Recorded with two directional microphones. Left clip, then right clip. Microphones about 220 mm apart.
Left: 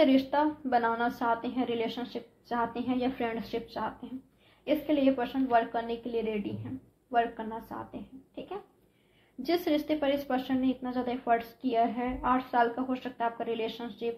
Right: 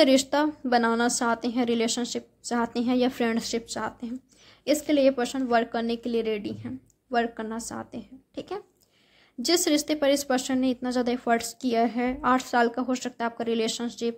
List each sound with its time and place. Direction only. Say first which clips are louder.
0.0 s speech: right 4 dB; 55° right (ahead or behind)